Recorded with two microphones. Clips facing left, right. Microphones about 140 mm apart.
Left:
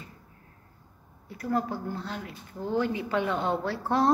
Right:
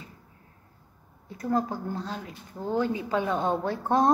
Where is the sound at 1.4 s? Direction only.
20° right (ahead or behind).